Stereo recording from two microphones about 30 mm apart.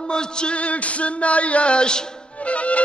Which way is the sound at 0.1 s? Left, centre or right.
Left.